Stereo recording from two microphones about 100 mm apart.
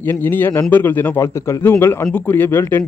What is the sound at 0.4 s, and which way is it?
Speech, 20° left (ahead or behind).